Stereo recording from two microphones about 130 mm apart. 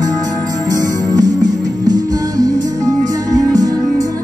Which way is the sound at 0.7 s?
30° right (ahead or behind).